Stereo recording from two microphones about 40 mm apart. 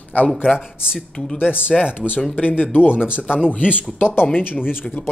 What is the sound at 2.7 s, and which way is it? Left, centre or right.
Speech, left.